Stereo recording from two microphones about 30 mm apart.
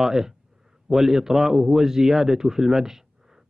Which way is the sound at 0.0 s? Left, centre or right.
Centre.